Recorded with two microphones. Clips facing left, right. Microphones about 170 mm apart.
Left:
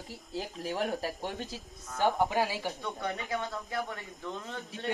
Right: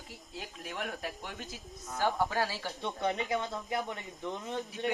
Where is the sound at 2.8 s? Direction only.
20° right (ahead or behind).